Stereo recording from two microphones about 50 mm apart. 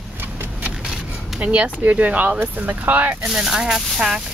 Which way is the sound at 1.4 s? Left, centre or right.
Right.